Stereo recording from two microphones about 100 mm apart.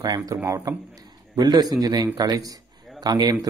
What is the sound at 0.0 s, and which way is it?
A man's voice, 40° right (ahead or behind).